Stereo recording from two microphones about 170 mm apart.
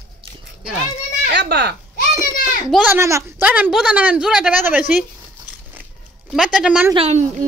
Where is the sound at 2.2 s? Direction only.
55° left (ahead or behind).